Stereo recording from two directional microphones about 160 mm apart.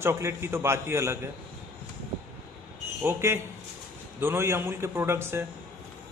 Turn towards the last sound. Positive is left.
turn(degrees=-15)  # may be behind; listen again after turning